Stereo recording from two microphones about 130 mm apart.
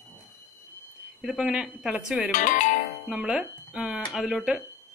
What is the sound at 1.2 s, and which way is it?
Speech, 10° right (ahead or behind).